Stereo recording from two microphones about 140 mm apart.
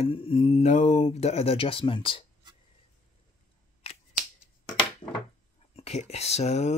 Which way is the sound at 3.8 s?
45° left (ahead or behind).